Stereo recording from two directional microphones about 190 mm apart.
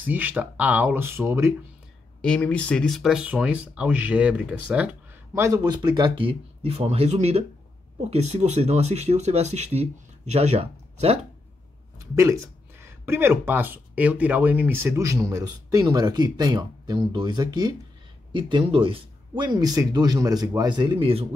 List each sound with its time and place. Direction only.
0.0 s speech: 10° right (ahead or behind)
2.2 s speech: 5° left (ahead or behind); by 11.1 s 35° right (ahead or behind)
12.2 s speech: 15° right (ahead or behind); by 21.3 s 30° right (ahead or behind)